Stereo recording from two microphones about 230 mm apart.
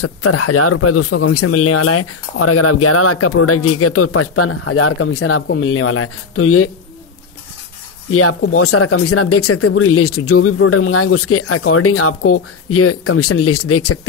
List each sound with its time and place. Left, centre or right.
0.0 s speech: left
8.1 s speech: left